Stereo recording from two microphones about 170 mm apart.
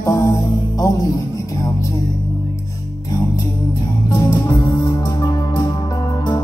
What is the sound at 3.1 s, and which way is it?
Music, 20° left (ahead or behind).